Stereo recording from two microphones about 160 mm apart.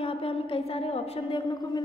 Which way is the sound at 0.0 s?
35° left (ahead or behind).